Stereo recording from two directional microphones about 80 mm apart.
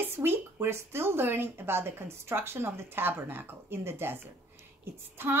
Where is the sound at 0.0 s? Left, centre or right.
Right.